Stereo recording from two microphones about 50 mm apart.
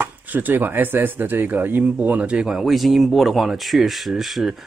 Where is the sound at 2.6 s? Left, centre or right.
Centre.